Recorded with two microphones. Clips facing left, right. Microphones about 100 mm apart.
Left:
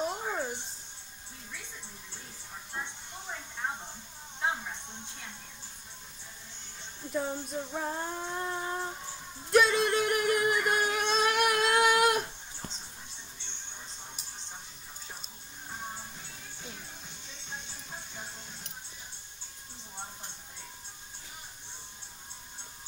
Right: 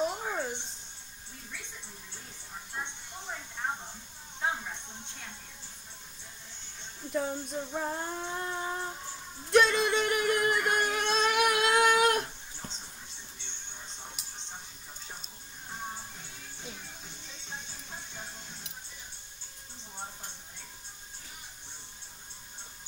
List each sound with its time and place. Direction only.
0.0 s a sound: centre (ahead or behind)
7.1 s female singing: centre (ahead or behind)
9.5 s music: 5° left (ahead or behind)
14.2 s music: 70° right (ahead or behind)